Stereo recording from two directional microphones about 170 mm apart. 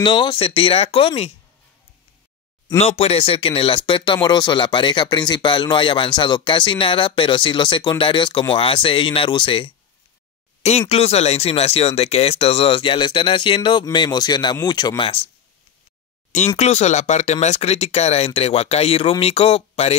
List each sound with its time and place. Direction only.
0.0 s speech: 30° left (ahead or behind)
2.8 s speech: 40° left (ahead or behind)
10.9 s speech: 40° left (ahead or behind)
16.5 s speech: 40° left (ahead or behind)